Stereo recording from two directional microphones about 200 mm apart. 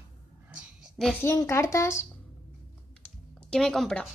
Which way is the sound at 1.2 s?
15° left (ahead or behind).